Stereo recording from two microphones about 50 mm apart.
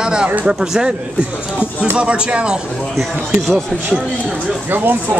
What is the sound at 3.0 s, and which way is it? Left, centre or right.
Speech, centre.